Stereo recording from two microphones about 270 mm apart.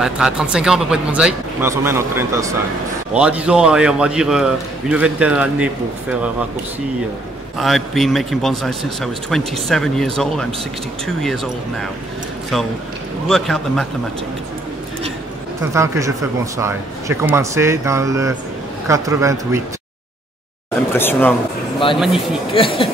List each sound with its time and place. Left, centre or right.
0.0 s speech: centre
7.5 s speech: centre
13.3 s speech: centre
15.7 s speech: centre
20.9 s speech: centre
22.5 s speech: centre